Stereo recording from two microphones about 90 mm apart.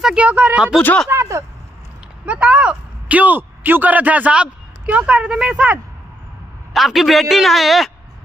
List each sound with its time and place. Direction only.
0.0 s speech: 10° right (ahead or behind)
1.1 s a sound: 30° right (ahead or behind)
2.2 s speech: 15° right (ahead or behind)
6.7 s a man's voice: centre (ahead or behind)